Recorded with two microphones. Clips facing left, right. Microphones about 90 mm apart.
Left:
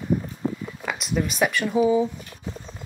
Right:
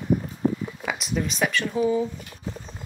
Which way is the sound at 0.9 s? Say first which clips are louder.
Left 2 dB; centre (ahead or behind).